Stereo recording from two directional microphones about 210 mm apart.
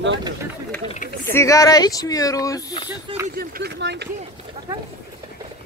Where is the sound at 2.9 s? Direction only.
10° right (ahead or behind).